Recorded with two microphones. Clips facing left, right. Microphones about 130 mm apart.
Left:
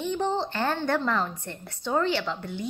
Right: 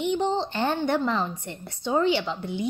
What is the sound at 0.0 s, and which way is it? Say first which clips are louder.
A woman's voice: right 2 dB; 20° right (ahead or behind).